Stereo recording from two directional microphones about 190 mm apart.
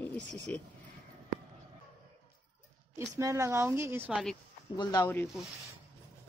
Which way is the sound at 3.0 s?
15° right (ahead or behind).